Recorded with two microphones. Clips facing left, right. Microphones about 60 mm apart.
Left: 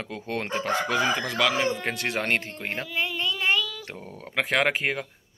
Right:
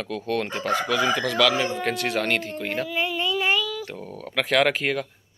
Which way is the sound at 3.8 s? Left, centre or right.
Left.